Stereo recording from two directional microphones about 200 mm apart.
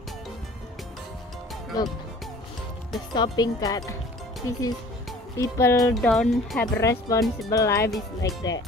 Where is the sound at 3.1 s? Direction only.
20° left (ahead or behind).